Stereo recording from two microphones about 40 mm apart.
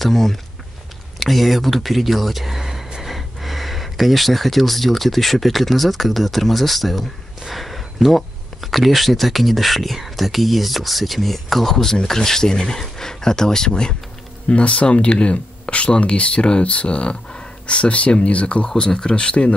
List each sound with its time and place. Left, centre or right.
0.0 s speech: centre
14.5 s speech: left
18.7 s speech: centre